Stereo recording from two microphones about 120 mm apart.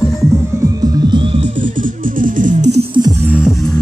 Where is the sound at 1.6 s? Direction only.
90° right.